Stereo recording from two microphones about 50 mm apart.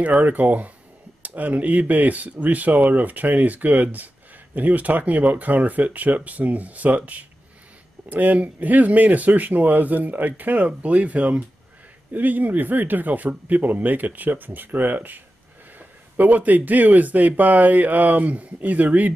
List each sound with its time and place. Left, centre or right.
0.0 s speech: right